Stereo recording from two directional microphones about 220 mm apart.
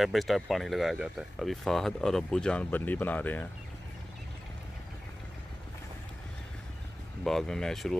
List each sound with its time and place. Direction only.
0.0 s speech: centre (ahead or behind)
7.2 s speech: centre (ahead or behind)